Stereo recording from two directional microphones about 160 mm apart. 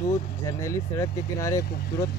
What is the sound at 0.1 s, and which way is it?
Speech, 20° left (ahead or behind).